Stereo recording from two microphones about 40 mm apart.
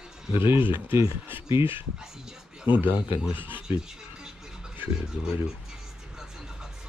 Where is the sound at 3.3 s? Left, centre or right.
Right.